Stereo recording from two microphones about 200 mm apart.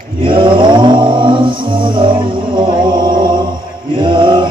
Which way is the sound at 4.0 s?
25° right (ahead or behind).